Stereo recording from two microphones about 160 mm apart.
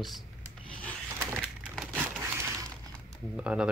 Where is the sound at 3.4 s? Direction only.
5° right (ahead or behind).